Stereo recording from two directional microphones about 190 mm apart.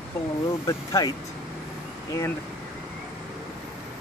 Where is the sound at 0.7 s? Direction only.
20° left (ahead or behind).